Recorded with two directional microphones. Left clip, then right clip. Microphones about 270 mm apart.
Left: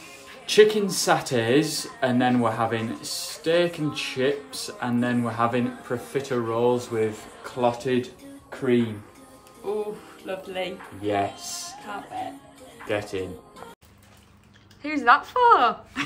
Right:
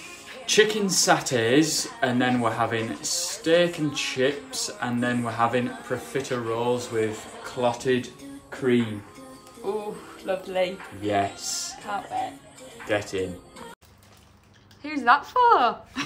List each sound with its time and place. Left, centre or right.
0.5 s speech: centre
9.6 s speech: centre
11.0 s speech: centre
11.8 s speech: centre
12.8 s speech: centre
14.8 s a woman's voice: centre